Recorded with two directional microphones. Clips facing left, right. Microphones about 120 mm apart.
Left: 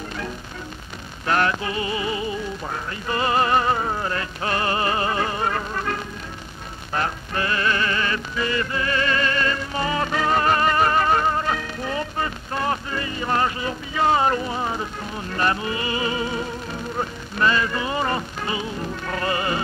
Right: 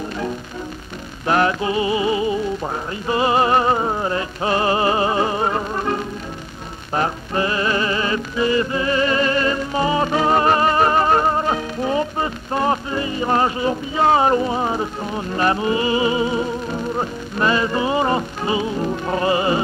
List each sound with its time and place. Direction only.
1.2 s music: 25° right (ahead or behind)